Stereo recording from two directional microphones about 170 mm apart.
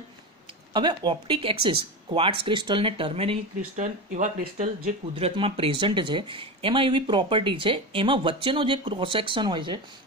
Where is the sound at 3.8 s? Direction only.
45° right (ahead or behind).